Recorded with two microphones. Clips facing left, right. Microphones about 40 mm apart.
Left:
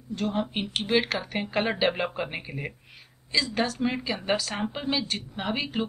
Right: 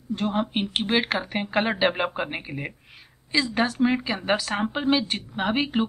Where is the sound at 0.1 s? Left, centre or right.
Right.